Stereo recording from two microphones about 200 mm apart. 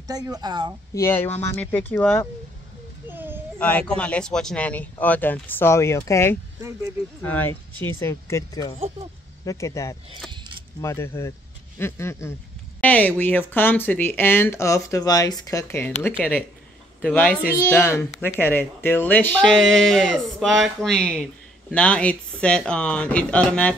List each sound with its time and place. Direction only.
0.0 s speech: 20° right (ahead or behind)
0.9 s speech: 15° left (ahead or behind)
3.1 s a sound: 10° right (ahead or behind)
3.5 s speech: 10° left (ahead or behind)
10.2 s speech: centre (ahead or behind)
10.8 s speech: 15° left (ahead or behind)